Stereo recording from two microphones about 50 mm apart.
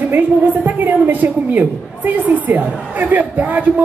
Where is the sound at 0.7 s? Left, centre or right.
Right.